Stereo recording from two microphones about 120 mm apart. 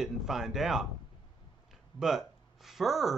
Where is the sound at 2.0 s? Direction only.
Centre (ahead or behind).